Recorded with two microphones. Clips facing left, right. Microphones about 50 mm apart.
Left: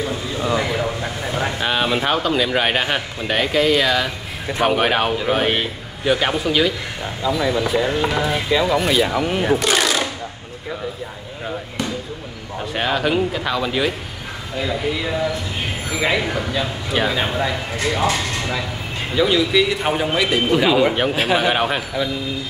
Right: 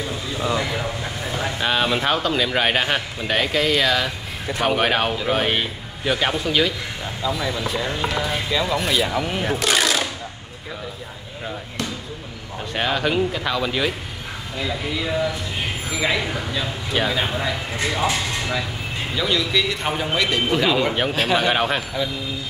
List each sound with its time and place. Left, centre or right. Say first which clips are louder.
0.0 s a sound: left 3 dB; centre
1.6 s speech: right 1 dB; centre
12.7 s speech: left 2 dB; centre
19.1 s speech: left 6 dB; centre